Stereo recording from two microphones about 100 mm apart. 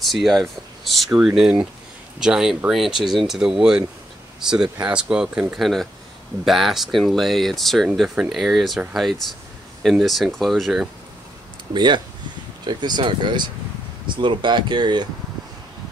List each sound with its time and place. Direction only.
0.0 s speech: centre (ahead or behind)
11.7 s speech: 50° right (ahead or behind)